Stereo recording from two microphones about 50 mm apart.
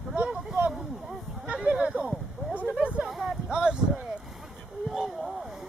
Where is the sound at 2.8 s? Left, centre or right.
Right.